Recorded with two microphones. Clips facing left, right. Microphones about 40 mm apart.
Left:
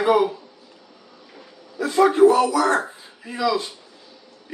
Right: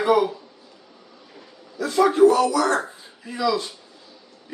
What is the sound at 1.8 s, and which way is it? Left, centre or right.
Speech, centre.